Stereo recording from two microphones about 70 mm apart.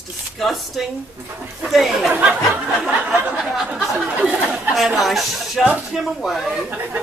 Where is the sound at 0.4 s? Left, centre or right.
Centre.